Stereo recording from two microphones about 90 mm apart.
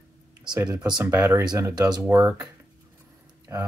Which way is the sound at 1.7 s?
50° right (ahead or behind).